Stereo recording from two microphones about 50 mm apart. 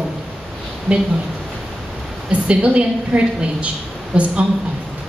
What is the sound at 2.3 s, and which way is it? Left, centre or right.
A woman's voice, right.